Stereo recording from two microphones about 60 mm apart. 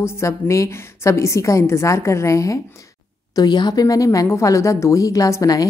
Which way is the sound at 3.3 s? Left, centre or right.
Left.